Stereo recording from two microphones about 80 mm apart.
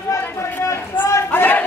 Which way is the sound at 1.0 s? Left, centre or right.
Left.